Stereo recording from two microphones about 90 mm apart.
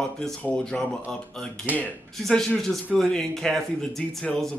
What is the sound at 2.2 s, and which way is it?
Speech, 5° left (ahead or behind).